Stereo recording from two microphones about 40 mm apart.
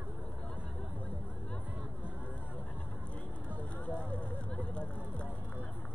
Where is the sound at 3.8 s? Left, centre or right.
Left.